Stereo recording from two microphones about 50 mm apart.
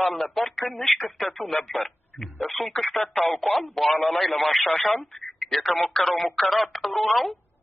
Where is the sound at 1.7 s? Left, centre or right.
Centre.